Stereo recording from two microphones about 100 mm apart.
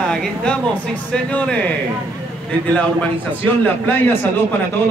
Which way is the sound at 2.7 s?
15° left (ahead or behind).